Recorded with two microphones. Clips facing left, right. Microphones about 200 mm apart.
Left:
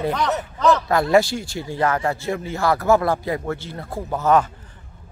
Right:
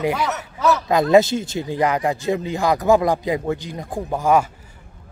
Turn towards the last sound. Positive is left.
turn(degrees=-10)  # may be behind; listen again after turning